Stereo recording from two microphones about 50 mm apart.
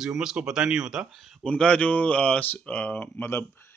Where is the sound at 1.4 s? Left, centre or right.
Left.